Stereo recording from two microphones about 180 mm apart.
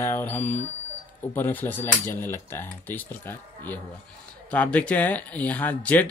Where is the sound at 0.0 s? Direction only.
10° left (ahead or behind).